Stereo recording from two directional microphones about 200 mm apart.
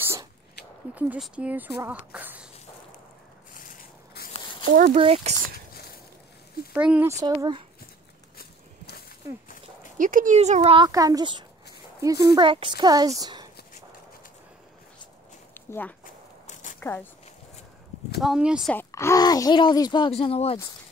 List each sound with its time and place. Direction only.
0.0 s a sound: 15° right (ahead or behind)
0.9 s speech: 5° right (ahead or behind)
3.5 s a sound: 40° left (ahead or behind)
4.9 s speech: 30° right (ahead or behind)
6.7 s speech: 5° right (ahead or behind)
8.4 s walk: 50° left (ahead or behind)
9.9 s speech: 40° right (ahead or behind); by 13.1 s 20° right (ahead or behind)
13.2 s a sound: 20° right (ahead or behind)
15.5 s walk: 10° left (ahead or behind)
16.8 s speech: 10° left (ahead or behind)
18.2 s speech: 5° right (ahead or behind)
18.7 s speech: 10° left (ahead or behind); by 20.5 s 30° left (ahead or behind)